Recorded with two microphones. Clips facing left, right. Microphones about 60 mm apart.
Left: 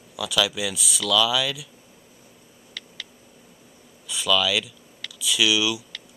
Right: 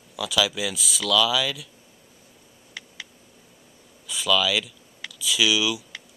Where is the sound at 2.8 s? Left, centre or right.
Centre.